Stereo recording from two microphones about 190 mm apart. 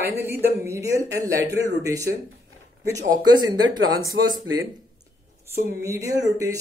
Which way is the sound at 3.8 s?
90° right.